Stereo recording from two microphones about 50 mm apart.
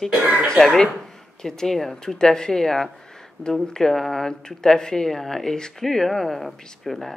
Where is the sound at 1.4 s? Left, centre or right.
Centre.